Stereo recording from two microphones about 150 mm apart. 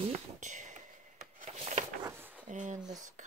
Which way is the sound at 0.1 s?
55° right (ahead or behind).